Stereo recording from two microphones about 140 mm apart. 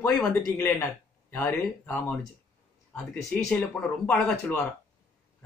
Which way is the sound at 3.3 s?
10° left (ahead or behind).